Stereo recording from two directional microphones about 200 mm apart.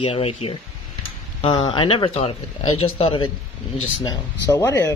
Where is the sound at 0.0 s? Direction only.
30° left (ahead or behind).